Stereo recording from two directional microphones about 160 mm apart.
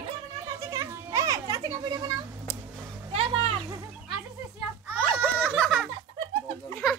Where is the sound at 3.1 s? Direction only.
40° right (ahead or behind).